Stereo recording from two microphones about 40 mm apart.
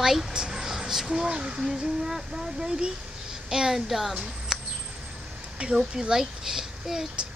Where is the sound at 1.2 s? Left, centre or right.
Right; by 4.1 s centre.